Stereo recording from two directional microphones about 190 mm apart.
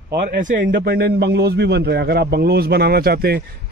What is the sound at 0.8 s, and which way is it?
A man's voice, 55° right (ahead or behind).